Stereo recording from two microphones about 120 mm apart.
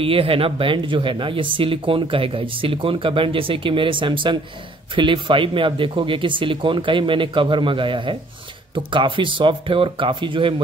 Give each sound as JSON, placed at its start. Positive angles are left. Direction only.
{"t": 0.0, "sound": "speech", "side_deg": -50}